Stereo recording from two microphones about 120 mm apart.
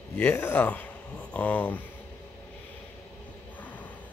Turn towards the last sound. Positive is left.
turn(degrees=15)  # may be behind; listen again after turning